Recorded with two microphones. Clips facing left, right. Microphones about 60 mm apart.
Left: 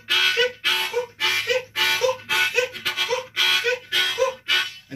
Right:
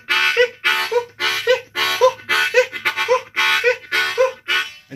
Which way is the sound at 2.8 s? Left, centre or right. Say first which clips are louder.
Right 6 dB; right.